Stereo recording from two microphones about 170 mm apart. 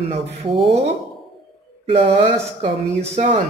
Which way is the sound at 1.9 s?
35° right (ahead or behind).